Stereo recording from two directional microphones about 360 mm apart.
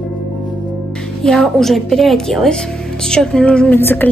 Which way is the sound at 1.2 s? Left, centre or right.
Centre.